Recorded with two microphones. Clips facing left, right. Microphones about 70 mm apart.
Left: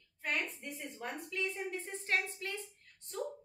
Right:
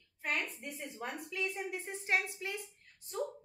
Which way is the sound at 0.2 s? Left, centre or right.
Centre.